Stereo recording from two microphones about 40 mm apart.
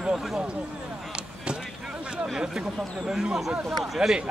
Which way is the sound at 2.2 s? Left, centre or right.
Centre.